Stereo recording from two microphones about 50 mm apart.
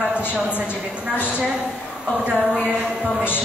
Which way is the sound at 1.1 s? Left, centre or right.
Left.